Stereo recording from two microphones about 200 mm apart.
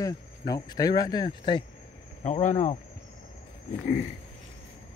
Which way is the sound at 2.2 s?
35° left (ahead or behind).